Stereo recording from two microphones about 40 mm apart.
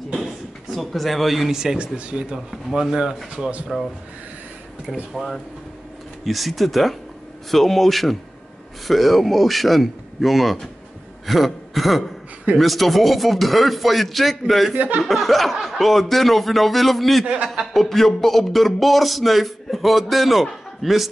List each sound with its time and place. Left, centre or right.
0.7 s speech: centre
1.5 s speech: centre
1.8 s speech: right
2.7 s speech: centre
3.7 s speech: centre
6.2 s speech: centre
14.7 s speech: right
15.0 s speech: centre